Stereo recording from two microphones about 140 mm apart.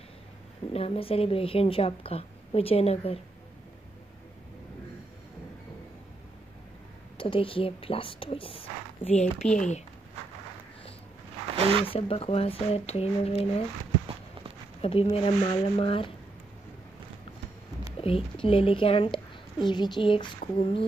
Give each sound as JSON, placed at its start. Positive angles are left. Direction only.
{"t": 0.7, "sound": "a woman's voice", "side_deg": 45}
{"t": 7.2, "sound": "speech", "side_deg": 40}
{"t": 11.5, "sound": "a sound", "side_deg": -45}
{"t": 11.8, "sound": "a woman's voice", "side_deg": 40}
{"t": 14.8, "sound": "speech", "side_deg": 45}
{"t": 17.9, "sound": "a woman's voice", "side_deg": 40}